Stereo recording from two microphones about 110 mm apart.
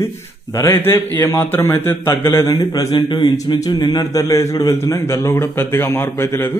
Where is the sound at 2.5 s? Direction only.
35° left (ahead or behind).